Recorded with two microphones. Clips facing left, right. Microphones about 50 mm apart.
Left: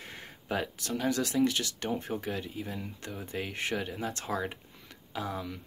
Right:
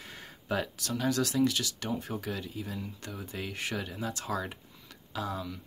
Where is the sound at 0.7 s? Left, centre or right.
Left.